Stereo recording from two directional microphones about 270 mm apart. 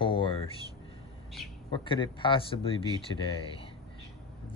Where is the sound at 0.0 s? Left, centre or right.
Centre.